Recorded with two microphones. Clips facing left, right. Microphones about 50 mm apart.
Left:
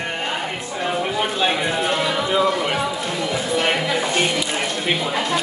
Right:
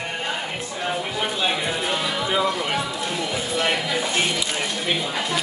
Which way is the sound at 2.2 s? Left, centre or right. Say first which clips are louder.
Left 3 dB; centre.